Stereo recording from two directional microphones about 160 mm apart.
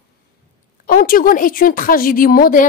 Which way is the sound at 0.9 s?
60° left (ahead or behind).